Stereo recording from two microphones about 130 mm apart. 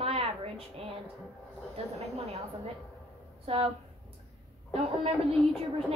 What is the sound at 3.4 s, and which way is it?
Speech, 50° right (ahead or behind).